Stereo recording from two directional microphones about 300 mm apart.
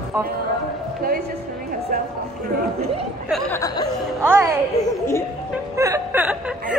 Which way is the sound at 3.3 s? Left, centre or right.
Centre.